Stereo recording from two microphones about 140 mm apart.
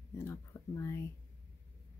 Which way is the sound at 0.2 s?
20° left (ahead or behind).